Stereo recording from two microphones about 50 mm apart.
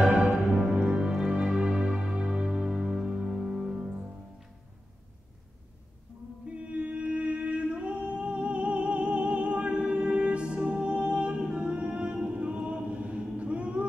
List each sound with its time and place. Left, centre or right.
0.0 s music: centre
6.4 s singing: right